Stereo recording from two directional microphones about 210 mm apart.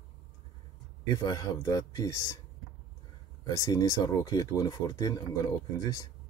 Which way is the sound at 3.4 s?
20° left (ahead or behind).